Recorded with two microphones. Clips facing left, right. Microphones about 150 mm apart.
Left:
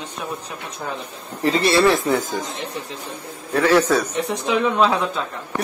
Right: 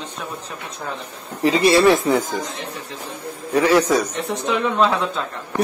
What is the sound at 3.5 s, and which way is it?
Speech, 10° right (ahead or behind).